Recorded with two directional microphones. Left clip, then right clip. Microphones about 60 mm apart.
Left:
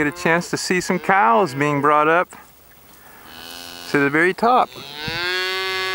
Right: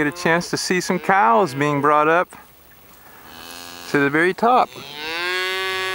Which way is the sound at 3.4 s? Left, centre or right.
Left.